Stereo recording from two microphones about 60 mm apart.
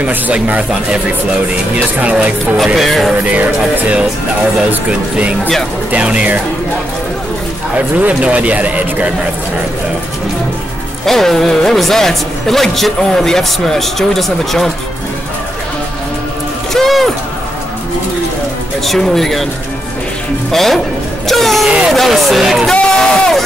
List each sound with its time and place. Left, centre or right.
0.0 s speech: right
2.5 s speech: centre
3.3 s speech: right
5.9 s speech: centre
7.7 s speech: right
11.1 s speech: centre
16.7 s a sound: centre
18.9 s speech: centre
20.5 s speech: centre
22.7 s a sound: centre